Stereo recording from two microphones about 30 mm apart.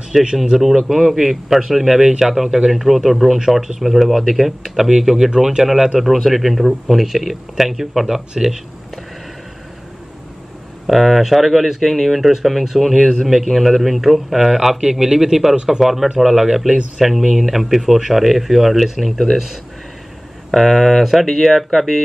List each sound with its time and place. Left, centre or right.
0.1 s a man's voice: centre
5.6 s a man's voice: centre
10.9 s a man's voice: centre
12.2 s speech: centre
12.7 s a man's voice: centre
14.8 s speech: right
15.5 s speech: right
15.8 s a man's voice: centre
20.5 s speech: centre
21.0 s a man's voice: centre